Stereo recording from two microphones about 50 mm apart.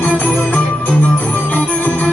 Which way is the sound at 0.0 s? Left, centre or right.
Left.